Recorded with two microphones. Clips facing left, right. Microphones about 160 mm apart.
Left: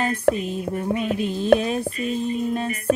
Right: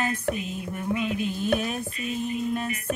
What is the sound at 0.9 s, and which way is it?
Mantra, 40° left (ahead or behind).